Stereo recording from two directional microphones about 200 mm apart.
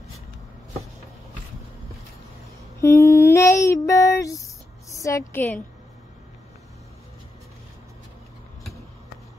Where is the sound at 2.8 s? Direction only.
15° left (ahead or behind).